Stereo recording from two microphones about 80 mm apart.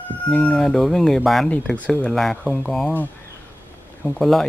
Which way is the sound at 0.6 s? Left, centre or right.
Centre.